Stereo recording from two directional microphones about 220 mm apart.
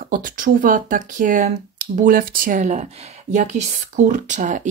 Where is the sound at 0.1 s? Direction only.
40° right (ahead or behind).